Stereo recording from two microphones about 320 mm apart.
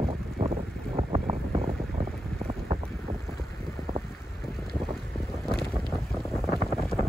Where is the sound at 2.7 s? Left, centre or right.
Right.